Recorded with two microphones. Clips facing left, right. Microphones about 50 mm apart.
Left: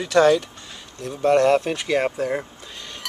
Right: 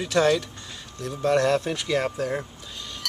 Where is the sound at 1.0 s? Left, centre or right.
Left.